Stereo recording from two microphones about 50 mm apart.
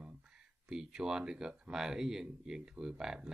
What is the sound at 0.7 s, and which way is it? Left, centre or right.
Speech, centre.